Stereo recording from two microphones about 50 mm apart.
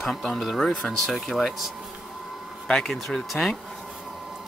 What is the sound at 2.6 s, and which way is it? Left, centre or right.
Speech, centre.